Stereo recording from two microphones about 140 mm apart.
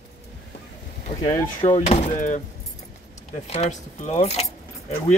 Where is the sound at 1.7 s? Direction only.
65° left (ahead or behind).